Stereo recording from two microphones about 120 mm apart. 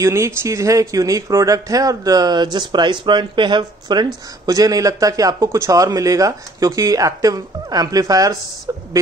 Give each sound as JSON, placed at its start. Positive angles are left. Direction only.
{"t": 0.0, "sound": "speech", "side_deg": -25}